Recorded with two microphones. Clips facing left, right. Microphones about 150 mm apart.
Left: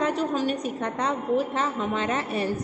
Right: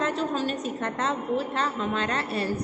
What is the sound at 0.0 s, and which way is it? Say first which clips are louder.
A woman's voice: left 2 dB; 15° left (ahead or behind).